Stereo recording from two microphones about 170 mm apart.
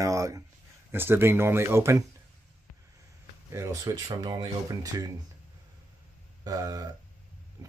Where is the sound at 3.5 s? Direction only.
15° right (ahead or behind).